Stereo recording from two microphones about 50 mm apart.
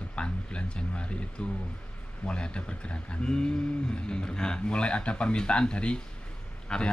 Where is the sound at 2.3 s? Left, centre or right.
Left.